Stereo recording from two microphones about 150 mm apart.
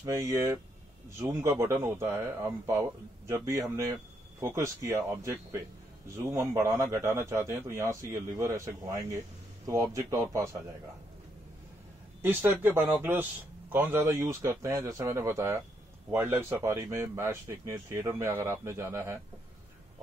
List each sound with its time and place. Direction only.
0.0 s a man's voice: 20° right (ahead or behind)
12.2 s speech: 15° right (ahead or behind)